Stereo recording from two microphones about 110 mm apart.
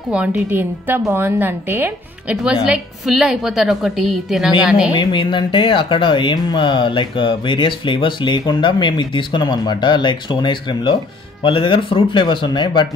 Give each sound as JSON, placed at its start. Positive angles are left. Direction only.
{"t": 0.1, "sound": "a woman's voice", "side_deg": -15}
{"t": 2.4, "sound": "a woman's voice", "side_deg": -5}
{"t": 4.9, "sound": "speech", "side_deg": 45}